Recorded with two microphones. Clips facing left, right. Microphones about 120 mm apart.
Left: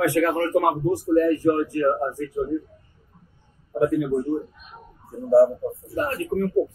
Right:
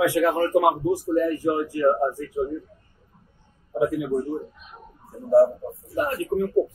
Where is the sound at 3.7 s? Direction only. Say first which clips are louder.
Left 2 dB; 10° right (ahead or behind).